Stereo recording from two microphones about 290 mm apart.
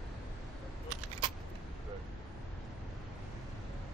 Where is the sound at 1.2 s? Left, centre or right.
Centre.